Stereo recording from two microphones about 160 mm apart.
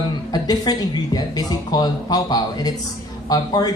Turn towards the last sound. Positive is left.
turn(degrees=25)  # may be behind; listen again after turning